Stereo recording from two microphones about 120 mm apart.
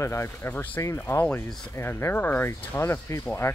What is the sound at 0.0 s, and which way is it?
Speech, 20° left (ahead or behind).